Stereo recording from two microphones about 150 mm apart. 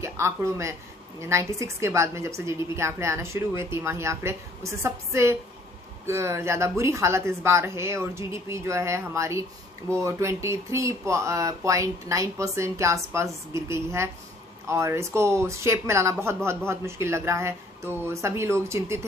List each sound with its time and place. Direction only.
0.0 s speech: 20° right (ahead or behind)